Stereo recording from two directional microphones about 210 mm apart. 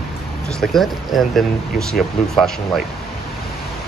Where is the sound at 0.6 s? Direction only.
Centre (ahead or behind).